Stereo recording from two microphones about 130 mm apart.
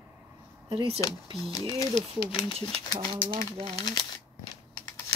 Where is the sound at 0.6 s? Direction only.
50° right (ahead or behind).